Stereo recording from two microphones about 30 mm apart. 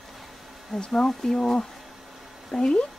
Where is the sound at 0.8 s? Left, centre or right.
Left.